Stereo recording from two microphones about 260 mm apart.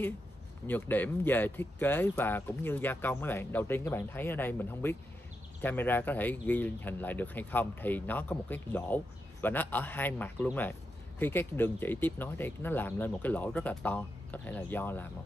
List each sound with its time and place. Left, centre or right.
0.7 s speech: centre